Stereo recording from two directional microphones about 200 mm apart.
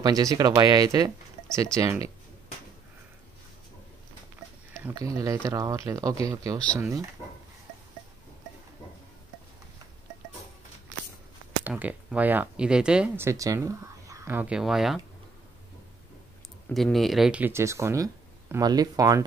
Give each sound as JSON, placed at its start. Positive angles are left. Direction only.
{"t": 0.0, "sound": "speech", "side_deg": -20}
{"t": 4.8, "sound": "speech", "side_deg": -15}
{"t": 11.6, "sound": "speech", "side_deg": -5}
{"t": 16.6, "sound": "speech", "side_deg": 0}